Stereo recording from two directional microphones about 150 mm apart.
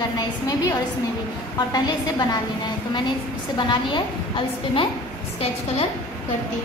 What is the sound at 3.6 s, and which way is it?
A woman's voice, 30° left (ahead or behind).